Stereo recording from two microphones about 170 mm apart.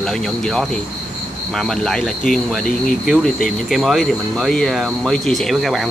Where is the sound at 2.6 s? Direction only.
50° left (ahead or behind).